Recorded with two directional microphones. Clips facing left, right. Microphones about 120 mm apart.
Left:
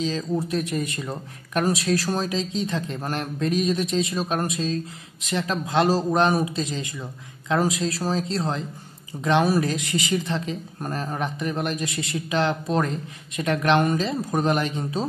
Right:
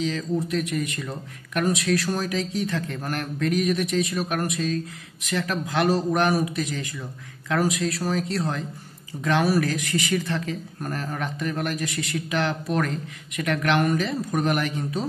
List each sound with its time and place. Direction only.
0.0 s speech: 30° left (ahead or behind)